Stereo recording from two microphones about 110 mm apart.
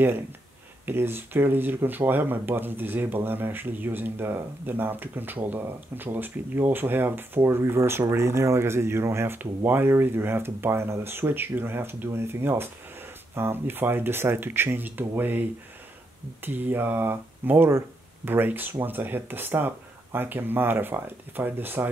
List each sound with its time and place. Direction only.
0.8 s speech: 20° right (ahead or behind)
16.4 s speech: 20° right (ahead or behind)